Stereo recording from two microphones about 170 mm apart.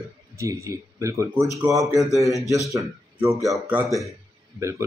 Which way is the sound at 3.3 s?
5° right (ahead or behind).